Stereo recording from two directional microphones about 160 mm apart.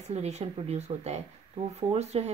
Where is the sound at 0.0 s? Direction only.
45° right (ahead or behind).